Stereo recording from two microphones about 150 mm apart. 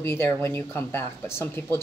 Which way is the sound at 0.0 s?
15° left (ahead or behind).